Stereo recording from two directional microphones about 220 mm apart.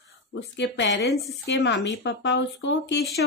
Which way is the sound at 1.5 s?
50° left (ahead or behind).